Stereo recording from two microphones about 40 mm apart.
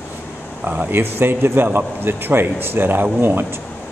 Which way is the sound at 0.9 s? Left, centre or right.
Right.